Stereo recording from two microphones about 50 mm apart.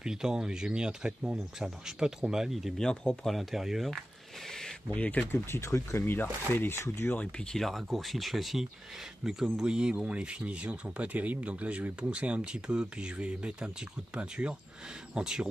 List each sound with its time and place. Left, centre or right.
0.0 s speech: centre
2.8 s speech: centre
3.3 s speech: centre
4.5 s a sound: centre
4.8 s speech: left
5.3 s speech: left
7.0 s speech: left
7.5 s speech: centre